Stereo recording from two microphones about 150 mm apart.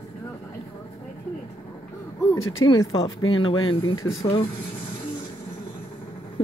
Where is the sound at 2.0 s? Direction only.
20° left (ahead or behind).